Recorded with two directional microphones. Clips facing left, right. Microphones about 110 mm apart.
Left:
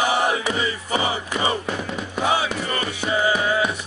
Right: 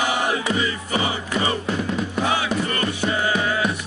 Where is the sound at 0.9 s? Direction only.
25° left (ahead or behind).